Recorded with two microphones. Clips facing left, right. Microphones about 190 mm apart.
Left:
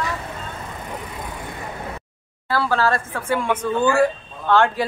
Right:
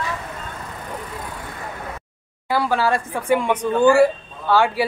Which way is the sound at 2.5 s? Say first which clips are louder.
Right 1 dB; 15° right (ahead or behind).